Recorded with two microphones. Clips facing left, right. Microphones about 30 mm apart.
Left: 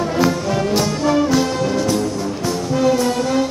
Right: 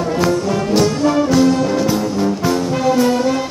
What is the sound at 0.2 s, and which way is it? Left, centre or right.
Brass instrument, centre.